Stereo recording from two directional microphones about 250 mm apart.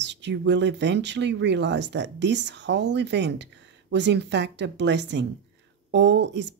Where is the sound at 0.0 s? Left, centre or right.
Right.